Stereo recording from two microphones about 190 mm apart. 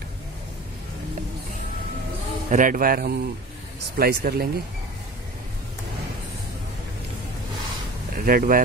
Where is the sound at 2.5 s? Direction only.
45° right (ahead or behind).